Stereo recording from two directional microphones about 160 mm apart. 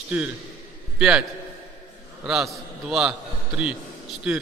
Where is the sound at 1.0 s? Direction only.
5° right (ahead or behind).